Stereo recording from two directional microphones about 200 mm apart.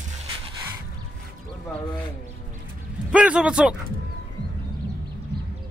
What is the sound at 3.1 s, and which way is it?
Speech, 5° right (ahead or behind).